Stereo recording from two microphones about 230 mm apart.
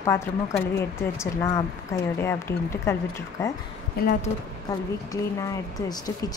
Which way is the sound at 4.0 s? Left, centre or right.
Left.